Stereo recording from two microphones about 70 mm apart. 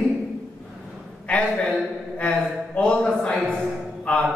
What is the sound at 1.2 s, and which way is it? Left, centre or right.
A man's voice, centre.